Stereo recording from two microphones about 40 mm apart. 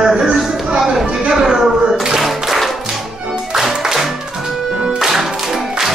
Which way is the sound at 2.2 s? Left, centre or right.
Centre.